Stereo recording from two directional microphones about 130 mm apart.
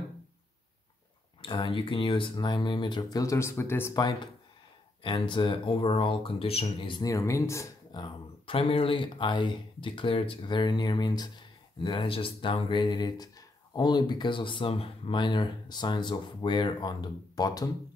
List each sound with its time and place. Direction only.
1.4 s speech: 40° left (ahead or behind); by 3.9 s 20° left (ahead or behind)
3.9 s speech: 30° left (ahead or behind)
7.1 s speech: 25° left (ahead or behind)
7.9 s speech: 40° left (ahead or behind)